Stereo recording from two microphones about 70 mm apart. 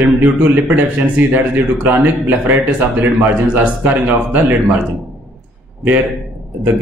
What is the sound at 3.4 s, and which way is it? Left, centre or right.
Speech, right.